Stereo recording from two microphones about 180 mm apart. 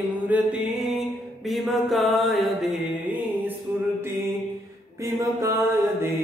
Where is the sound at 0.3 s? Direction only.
5° right (ahead or behind).